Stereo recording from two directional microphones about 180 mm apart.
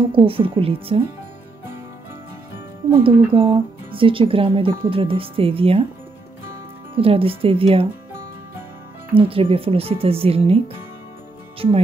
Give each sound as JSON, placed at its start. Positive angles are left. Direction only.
{"t": 0.1, "sound": "speech", "side_deg": -30}
{"t": 2.9, "sound": "speech", "side_deg": -30}
{"t": 7.0, "sound": "speech", "side_deg": -30}
{"t": 9.1, "sound": "speech", "side_deg": -30}